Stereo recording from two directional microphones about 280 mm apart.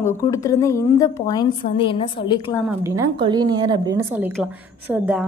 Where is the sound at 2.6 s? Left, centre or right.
Centre.